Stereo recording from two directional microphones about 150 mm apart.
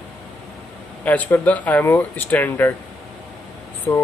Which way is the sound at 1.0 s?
10° left (ahead or behind).